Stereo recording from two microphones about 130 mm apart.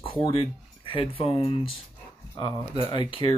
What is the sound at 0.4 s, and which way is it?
Speech, 45° left (ahead or behind).